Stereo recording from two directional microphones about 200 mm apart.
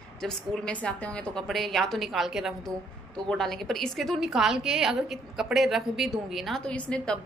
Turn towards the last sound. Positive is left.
turn(degrees=5)  # may be behind; listen again after turning